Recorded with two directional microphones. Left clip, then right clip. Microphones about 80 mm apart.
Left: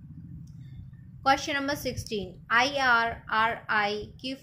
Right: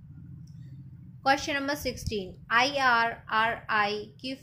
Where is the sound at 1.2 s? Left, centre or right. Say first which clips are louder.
Left 1 dB; centre.